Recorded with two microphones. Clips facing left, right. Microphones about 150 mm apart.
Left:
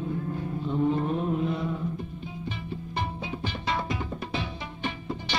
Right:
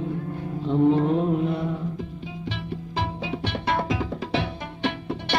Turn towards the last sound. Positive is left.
turn(degrees=-75)  # may be behind; listen again after turning